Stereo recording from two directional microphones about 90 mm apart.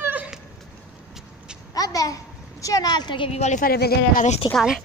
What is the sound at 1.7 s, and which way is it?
A child's voice, 40° left (ahead or behind).